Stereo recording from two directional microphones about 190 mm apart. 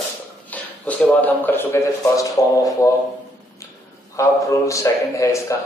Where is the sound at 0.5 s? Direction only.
10° left (ahead or behind).